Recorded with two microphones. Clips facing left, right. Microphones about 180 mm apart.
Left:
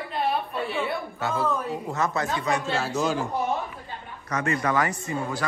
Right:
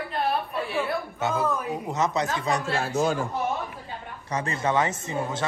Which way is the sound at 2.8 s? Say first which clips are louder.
Right 1 dB; 55° right (ahead or behind).